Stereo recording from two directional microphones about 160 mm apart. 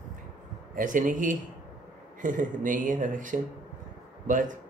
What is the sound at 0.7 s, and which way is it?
Speech, 55° right (ahead or behind).